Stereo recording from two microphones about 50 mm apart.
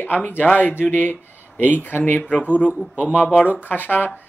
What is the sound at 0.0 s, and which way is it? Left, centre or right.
Speech, left.